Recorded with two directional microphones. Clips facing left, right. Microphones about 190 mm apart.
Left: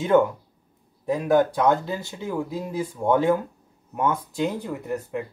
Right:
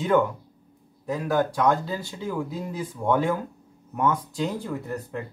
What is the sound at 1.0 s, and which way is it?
Speech, 20° left (ahead or behind).